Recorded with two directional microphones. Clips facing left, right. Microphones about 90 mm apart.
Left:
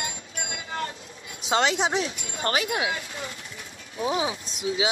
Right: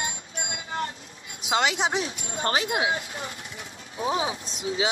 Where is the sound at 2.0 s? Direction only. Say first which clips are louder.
Left 1 dB; 35° right (ahead or behind).